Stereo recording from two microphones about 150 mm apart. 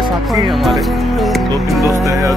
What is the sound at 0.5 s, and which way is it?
Speech, centre (ahead or behind).